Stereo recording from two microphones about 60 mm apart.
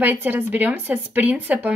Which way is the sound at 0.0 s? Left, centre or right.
Right.